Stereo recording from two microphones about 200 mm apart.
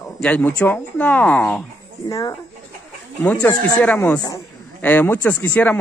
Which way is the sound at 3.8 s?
10° left (ahead or behind).